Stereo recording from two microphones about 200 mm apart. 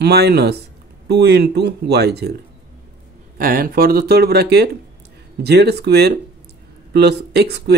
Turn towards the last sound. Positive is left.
turn(degrees=-55)  # may be behind; listen again after turning